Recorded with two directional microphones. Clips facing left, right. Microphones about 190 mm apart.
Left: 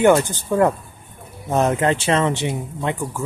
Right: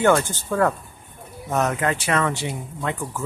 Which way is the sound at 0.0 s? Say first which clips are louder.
Left 4 dB; 15° left (ahead or behind).